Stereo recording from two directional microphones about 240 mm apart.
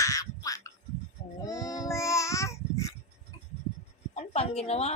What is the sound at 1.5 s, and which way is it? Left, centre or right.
Child singing, centre.